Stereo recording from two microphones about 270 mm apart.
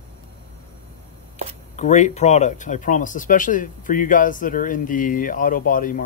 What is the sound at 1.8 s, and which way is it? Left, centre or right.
Speech, left.